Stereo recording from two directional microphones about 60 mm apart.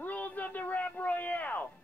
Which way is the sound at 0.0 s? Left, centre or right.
Left.